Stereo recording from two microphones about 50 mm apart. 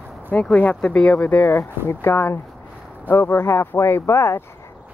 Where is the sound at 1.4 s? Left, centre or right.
Left.